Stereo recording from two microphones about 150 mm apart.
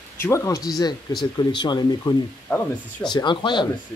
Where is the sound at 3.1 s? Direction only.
30° left (ahead or behind).